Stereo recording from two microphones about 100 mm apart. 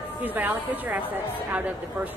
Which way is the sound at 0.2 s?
15° right (ahead or behind).